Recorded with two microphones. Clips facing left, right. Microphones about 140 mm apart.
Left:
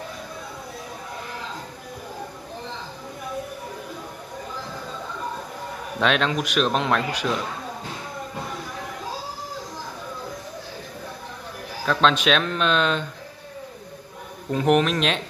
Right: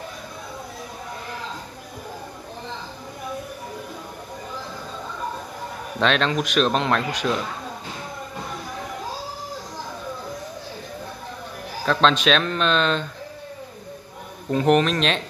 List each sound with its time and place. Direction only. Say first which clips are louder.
5.9 s speech: right 1 dB; 5° left (ahead or behind)
11.8 s speech: right 1 dB; 5° left (ahead or behind)
14.5 s speech: right 1 dB; 5° left (ahead or behind)